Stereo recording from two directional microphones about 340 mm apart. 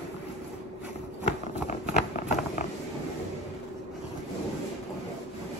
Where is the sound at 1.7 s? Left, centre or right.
Left.